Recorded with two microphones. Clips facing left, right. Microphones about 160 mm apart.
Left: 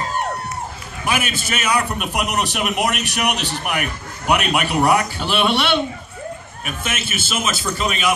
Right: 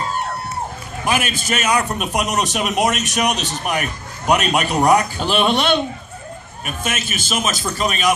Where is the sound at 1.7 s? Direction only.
20° right (ahead or behind).